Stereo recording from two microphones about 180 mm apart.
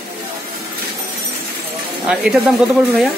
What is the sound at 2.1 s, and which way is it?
Speech, 5° right (ahead or behind).